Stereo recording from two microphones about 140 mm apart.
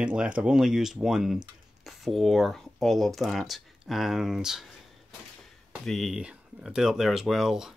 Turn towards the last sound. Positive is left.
turn(degrees=-5)  # may be behind; listen again after turning